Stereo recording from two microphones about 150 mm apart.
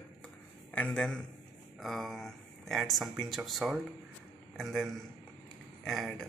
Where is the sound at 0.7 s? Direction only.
5° left (ahead or behind).